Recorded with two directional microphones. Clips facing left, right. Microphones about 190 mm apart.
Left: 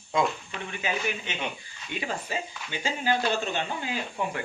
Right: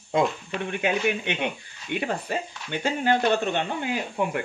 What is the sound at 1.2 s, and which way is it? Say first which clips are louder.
Speech: right 6 dB; 60° right (ahead or behind).